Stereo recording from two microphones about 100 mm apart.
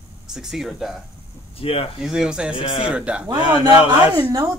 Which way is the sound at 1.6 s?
70° left (ahead or behind).